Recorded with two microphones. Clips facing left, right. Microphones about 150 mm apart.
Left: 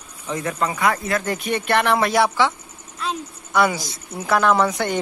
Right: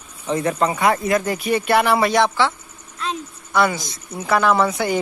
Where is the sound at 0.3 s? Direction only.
30° right (ahead or behind); by 1.3 s 15° right (ahead or behind).